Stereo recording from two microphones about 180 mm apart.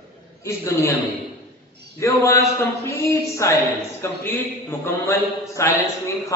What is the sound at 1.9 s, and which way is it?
A man's voice, 15° left (ahead or behind).